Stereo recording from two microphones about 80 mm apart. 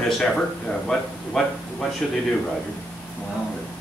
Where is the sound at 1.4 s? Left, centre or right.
Centre.